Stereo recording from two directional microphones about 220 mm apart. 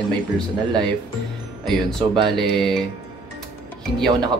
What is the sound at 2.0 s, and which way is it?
Speech, 20° right (ahead or behind).